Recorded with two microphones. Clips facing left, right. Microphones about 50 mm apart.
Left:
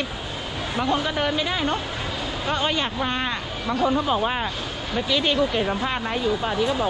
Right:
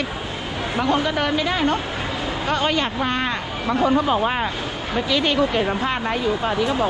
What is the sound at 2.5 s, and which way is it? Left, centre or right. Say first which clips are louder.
Speech: right 3 dB; right.